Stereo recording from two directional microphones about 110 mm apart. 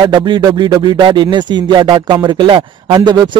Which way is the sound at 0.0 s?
45° right (ahead or behind).